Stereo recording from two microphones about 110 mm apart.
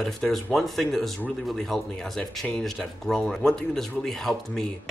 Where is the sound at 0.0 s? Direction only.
5° left (ahead or behind).